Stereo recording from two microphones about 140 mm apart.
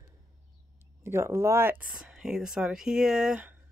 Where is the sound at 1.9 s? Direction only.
5° right (ahead or behind).